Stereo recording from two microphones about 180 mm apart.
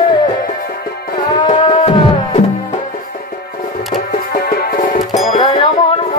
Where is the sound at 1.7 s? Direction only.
30° left (ahead or behind).